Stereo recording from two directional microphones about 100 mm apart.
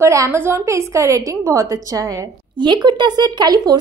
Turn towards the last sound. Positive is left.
turn(degrees=-45)  # may be behind; listen again after turning